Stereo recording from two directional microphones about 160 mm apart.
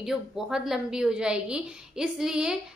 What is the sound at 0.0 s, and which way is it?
A woman's voice, 5° right (ahead or behind).